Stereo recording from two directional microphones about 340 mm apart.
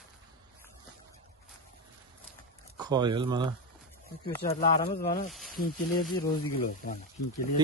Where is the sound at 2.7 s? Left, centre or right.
Centre.